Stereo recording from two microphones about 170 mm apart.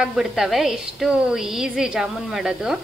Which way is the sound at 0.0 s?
Centre (ahead or behind).